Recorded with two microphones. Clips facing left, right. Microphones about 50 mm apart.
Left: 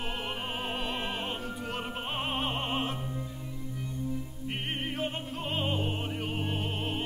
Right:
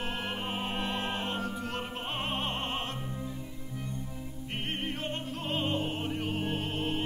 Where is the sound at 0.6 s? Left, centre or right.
Centre.